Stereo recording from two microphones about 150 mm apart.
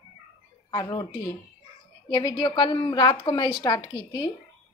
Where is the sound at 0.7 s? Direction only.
25° left (ahead or behind).